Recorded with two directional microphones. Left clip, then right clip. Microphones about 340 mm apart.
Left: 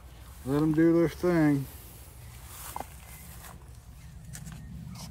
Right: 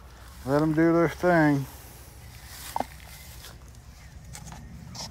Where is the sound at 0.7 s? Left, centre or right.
Centre.